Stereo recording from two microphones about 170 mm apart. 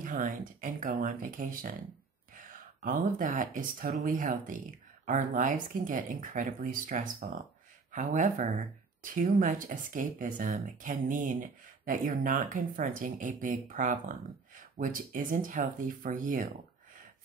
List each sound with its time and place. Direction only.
0.0 s speech: 50° right (ahead or behind)